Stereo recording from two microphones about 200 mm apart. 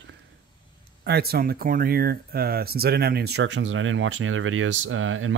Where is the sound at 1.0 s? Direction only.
50° right (ahead or behind).